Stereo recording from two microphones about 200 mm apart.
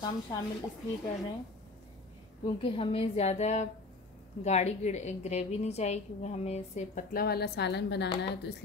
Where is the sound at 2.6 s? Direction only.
30° left (ahead or behind).